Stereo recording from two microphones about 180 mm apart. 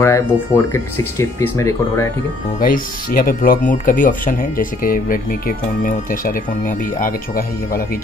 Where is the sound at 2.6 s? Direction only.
50° left (ahead or behind).